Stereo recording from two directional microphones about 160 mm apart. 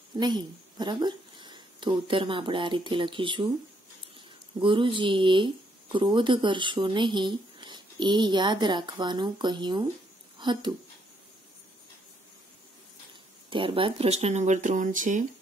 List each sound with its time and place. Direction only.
0.2 s speech: 25° right (ahead or behind)
4.6 s speech: 30° right (ahead or behind)
13.5 s speech: 35° right (ahead or behind); by 15.2 s 50° right (ahead or behind)